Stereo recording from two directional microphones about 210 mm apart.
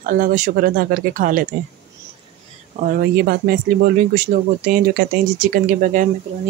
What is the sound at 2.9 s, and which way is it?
Speech, 45° right (ahead or behind).